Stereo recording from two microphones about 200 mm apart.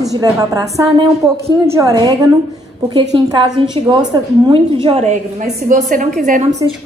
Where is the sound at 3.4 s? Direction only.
25° right (ahead or behind).